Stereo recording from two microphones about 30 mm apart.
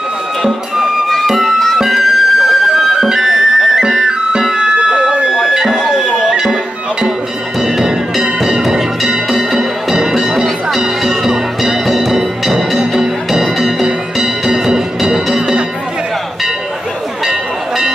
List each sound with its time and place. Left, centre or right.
1.2 s music: centre
2.7 s music: centre; by 5.3 s right
5.7 s a sound: centre
5.9 s music: centre
6.3 s music: right
7.6 s music: centre